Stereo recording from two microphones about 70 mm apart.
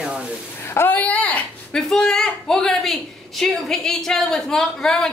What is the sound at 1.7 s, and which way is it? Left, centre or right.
A woman's voice, centre.